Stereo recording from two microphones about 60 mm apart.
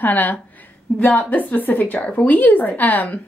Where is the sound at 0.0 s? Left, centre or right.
Left.